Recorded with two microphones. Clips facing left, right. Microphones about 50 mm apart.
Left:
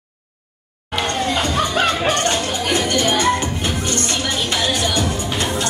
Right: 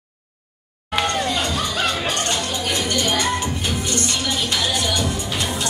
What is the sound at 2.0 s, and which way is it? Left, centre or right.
Music, left.